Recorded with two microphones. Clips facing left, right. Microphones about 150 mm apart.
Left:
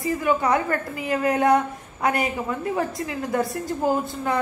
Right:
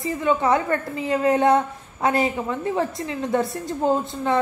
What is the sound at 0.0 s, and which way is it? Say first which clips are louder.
A woman's voice: right 1 dB; 25° right (ahead or behind).